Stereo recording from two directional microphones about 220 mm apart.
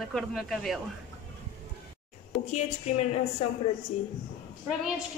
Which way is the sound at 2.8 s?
30° left (ahead or behind).